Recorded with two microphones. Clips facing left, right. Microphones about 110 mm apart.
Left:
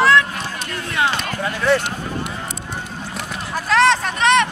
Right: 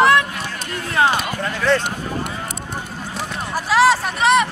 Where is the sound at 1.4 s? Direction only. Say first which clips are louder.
Left 4 dB; 10° left (ahead or behind).